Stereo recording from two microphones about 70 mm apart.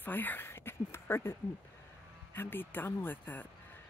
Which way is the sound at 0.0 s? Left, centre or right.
Left.